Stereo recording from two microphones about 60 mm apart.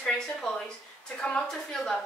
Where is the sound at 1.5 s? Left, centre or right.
Centre.